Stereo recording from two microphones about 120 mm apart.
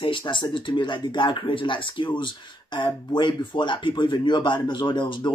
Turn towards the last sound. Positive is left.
turn(degrees=40)  # may be behind; listen again after turning